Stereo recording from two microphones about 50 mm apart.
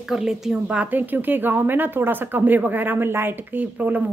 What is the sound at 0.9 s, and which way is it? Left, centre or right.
Speech, right.